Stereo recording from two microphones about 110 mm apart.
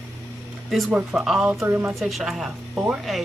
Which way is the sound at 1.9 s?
Centre (ahead or behind).